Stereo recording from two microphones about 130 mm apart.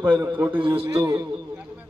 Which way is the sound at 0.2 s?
15° right (ahead or behind).